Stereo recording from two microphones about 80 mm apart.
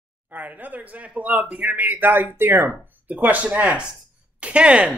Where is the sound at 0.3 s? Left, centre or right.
Right.